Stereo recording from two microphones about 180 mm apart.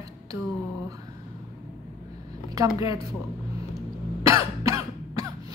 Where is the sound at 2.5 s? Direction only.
20° right (ahead or behind).